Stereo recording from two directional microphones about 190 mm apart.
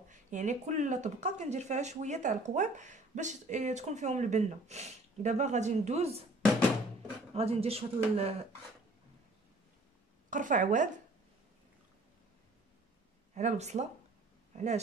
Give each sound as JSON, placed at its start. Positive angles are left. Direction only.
{"t": 0.1, "sound": "speech", "side_deg": -40}
{"t": 7.3, "sound": "speech", "side_deg": -30}
{"t": 10.3, "sound": "speech", "side_deg": -45}
{"t": 13.3, "sound": "speech", "side_deg": -40}